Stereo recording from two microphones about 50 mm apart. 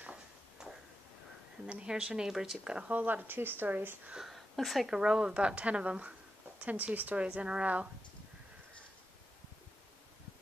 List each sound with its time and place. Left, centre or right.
0.6 s a sound: centre
1.7 s a woman's voice: centre
2.9 s speech: right
3.7 s speech: right
4.2 s a woman's voice: centre; by 7.9 s right